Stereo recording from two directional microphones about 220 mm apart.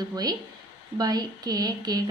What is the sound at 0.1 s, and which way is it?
A woman's voice, 15° right (ahead or behind).